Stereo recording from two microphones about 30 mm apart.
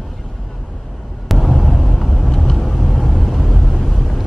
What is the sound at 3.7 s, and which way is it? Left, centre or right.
Vehicle, centre.